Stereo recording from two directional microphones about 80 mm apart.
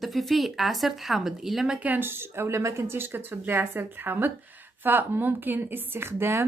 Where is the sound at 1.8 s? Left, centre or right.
Right.